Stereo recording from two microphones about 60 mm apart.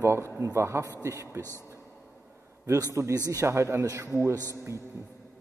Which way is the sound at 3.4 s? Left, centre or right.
Right.